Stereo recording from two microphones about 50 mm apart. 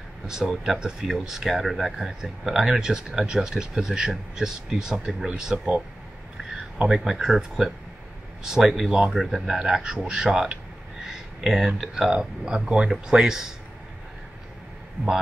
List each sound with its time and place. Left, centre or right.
0.3 s speech: centre
6.9 s speech: centre
9.6 s speech: centre
11.1 s a sound: centre
12.1 s speech: centre